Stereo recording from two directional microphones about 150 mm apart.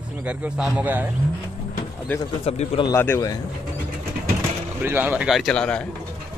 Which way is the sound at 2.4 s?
45° left (ahead or behind).